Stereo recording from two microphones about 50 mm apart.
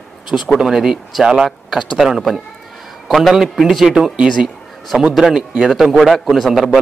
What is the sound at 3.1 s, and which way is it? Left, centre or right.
Speech, centre.